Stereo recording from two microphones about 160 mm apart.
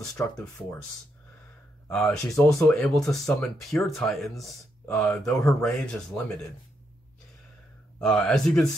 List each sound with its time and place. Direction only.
2.0 s speech: 15° left (ahead or behind)
2.7 s speech: centre (ahead or behind)
8.0 s speech: 5° left (ahead or behind)